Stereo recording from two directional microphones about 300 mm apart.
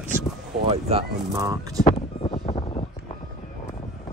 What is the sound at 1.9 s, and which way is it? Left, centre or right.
Vehicle, centre.